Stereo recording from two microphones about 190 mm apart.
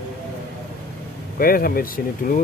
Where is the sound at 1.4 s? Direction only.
50° left (ahead or behind).